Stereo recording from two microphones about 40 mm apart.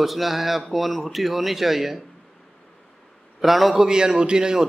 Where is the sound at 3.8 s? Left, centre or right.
Centre.